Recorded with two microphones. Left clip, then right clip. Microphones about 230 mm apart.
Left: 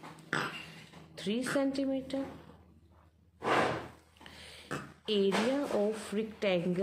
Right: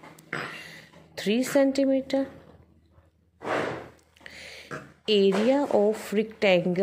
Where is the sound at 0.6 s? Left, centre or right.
Right.